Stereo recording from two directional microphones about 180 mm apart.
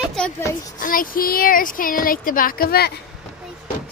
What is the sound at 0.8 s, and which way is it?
Speech, 50° left (ahead or behind).